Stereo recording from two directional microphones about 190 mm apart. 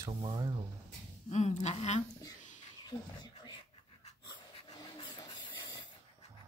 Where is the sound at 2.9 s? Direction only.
20° left (ahead or behind).